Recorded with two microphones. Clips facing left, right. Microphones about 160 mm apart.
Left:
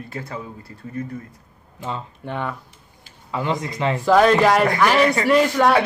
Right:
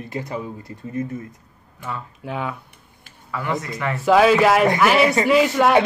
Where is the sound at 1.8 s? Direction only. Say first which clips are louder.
Left 2 dB; 25° left (ahead or behind).